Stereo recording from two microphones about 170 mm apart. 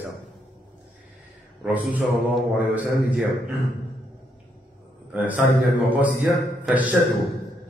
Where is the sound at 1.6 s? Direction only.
10° right (ahead or behind).